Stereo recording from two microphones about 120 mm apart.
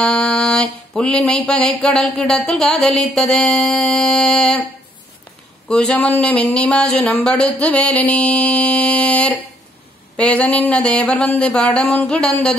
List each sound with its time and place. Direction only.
0.0 s a sound: 5° left (ahead or behind)
2.2 s music: 5° left (ahead or behind)
5.7 s speech: 10° left (ahead or behind)